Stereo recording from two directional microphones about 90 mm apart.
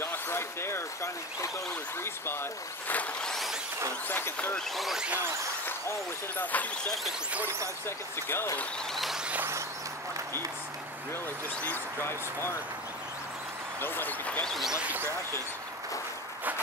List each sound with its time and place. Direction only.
0.0 s basketball bounce: 25° left (ahead or behind)
2.9 s vehicle: 15° left (ahead or behind)
4.1 s speech: 25° left (ahead or behind)
4.6 s speech: centre (ahead or behind)
5.7 s speech: 25° left (ahead or behind)
7.3 s speech: 25° right (ahead or behind)
8.3 s speech: 25° left (ahead or behind)
8.9 s speech: centre (ahead or behind)
11.6 s speech: 25° left (ahead or behind)
13.7 s speech: 25° left (ahead or behind)
14.4 s speech: centre (ahead or behind)